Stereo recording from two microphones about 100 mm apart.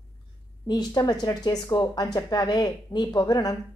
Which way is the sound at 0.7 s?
45° left (ahead or behind).